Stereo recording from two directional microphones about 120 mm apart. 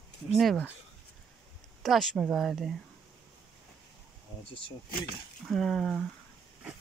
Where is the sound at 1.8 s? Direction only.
Centre (ahead or behind).